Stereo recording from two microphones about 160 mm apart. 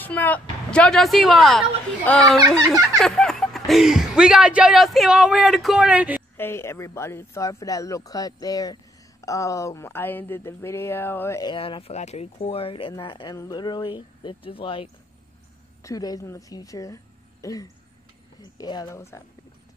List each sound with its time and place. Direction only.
0.0 s speech: 10° left (ahead or behind)
2.6 s a sound: 20° right (ahead or behind)
3.0 s speech: 5° left (ahead or behind)
6.3 s speech: 15° left (ahead or behind)
11.5 s speech: 35° left (ahead or behind)
15.8 s a woman's voice: 20° left (ahead or behind)